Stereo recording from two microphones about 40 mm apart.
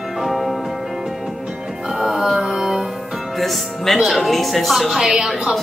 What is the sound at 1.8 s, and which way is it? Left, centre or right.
Music, centre.